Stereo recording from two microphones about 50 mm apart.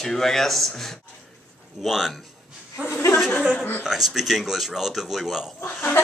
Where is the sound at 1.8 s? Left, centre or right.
Centre.